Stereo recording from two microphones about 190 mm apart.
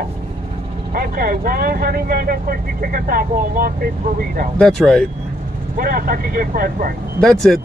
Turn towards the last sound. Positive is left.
turn(degrees=0)  # may be behind; listen again after turning